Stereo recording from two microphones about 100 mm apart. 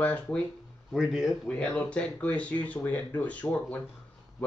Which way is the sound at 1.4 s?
10° left (ahead or behind).